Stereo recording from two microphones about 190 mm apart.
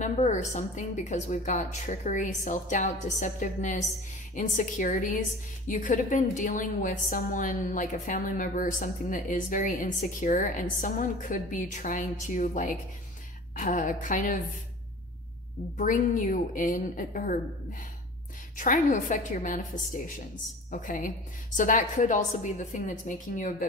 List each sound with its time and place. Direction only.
0.0 s a woman's voice: 35° left (ahead or behind)
15.8 s a woman's voice: 45° left (ahead or behind)
18.6 s a woman's voice: 45° left (ahead or behind)